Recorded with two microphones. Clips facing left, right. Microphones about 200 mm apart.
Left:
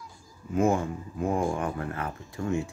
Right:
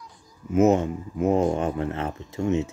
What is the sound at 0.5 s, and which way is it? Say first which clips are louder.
Speech: right 6 dB; 20° right (ahead or behind).